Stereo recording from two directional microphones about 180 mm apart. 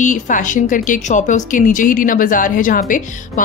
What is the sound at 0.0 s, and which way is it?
A woman's voice, 45° left (ahead or behind).